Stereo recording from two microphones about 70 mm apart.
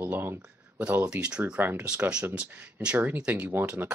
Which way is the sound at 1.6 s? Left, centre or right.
Right.